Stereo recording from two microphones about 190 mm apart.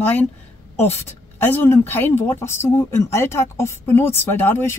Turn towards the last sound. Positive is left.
turn(degrees=10)  # may be behind; listen again after turning